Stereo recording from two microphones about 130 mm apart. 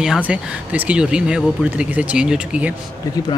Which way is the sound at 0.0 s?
5° right (ahead or behind).